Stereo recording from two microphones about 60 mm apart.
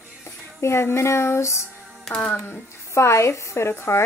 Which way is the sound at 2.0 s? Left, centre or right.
Centre.